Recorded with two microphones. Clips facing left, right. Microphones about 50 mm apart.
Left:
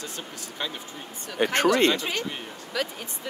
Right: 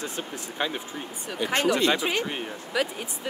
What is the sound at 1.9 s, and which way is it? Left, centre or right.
Speech, centre.